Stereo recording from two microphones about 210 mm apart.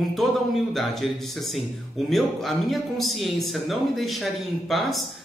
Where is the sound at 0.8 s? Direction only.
Centre (ahead or behind).